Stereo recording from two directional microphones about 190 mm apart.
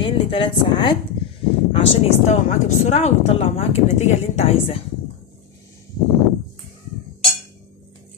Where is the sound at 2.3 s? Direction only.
35° left (ahead or behind).